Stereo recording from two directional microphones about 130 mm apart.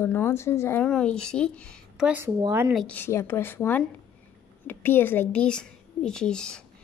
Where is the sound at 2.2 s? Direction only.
20° right (ahead or behind).